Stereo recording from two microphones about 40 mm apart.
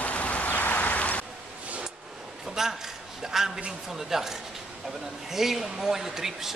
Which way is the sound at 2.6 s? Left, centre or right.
Centre.